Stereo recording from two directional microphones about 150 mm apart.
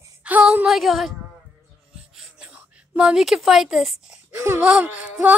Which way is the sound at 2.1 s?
5° right (ahead or behind).